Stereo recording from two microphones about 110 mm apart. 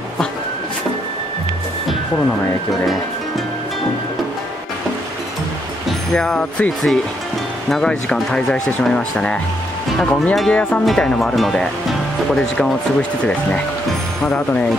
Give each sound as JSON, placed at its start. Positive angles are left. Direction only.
{"t": 6.1, "sound": "speech", "side_deg": 5}
{"t": 14.2, "sound": "speech", "side_deg": 15}